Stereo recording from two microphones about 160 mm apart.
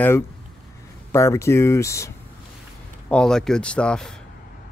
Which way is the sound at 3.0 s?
5° left (ahead or behind).